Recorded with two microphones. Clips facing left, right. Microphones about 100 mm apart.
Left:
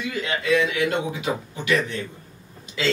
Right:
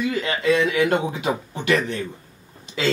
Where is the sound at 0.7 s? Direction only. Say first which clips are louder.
Right 4 dB; 55° right (ahead or behind).